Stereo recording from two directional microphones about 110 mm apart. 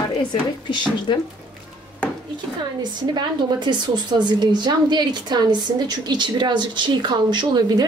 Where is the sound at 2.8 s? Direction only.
45° right (ahead or behind).